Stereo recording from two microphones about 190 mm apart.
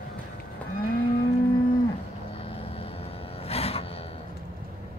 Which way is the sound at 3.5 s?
30° left (ahead or behind).